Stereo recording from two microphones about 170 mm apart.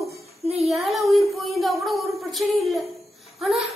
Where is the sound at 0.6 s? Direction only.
Centre (ahead or behind).